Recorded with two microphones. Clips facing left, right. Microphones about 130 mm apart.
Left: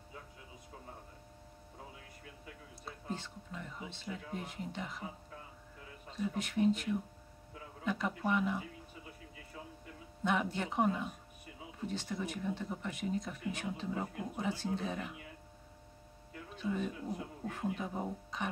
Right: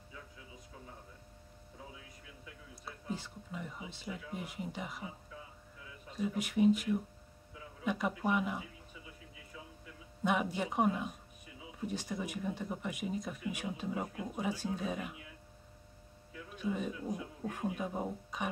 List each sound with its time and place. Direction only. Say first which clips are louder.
2.0 s music: left 1 dB; 55° left (ahead or behind)
2.8 s speech: right 1 dB; 10° right (ahead or behind)
6.0 s speech: right 1 dB; 10° right (ahead or behind)
9.0 s music: left 2 dB; 55° left (ahead or behind)
10.2 s speech: right 1 dB; 10° right (ahead or behind)
16.5 s speech: even; 10° right (ahead or behind)